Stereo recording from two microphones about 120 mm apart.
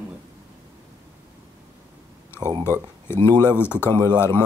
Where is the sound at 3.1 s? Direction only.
20° left (ahead or behind).